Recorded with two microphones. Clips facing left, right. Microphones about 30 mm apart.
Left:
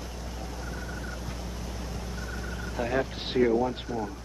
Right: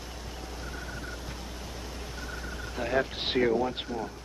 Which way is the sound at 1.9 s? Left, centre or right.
Right.